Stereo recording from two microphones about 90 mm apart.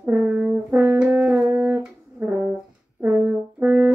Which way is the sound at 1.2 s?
15° right (ahead or behind).